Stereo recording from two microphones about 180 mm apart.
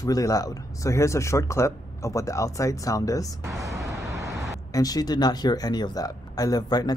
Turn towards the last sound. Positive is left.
turn(degrees=20)  # may be behind; listen again after turning